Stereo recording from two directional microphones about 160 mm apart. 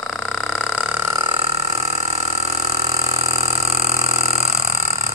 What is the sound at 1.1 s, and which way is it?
Burping, 30° right (ahead or behind).